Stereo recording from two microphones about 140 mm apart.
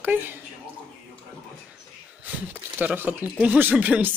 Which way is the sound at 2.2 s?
15° right (ahead or behind).